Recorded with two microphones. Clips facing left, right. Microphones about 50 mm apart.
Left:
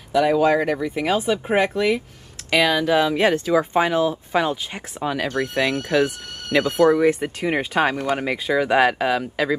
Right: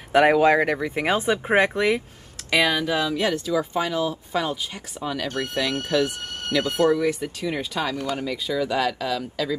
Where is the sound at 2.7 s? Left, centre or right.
Left.